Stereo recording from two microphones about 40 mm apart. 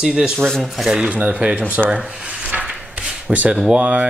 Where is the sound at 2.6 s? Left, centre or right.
Right.